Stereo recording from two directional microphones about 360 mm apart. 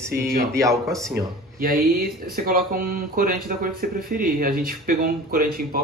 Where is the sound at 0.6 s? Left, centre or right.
Centre.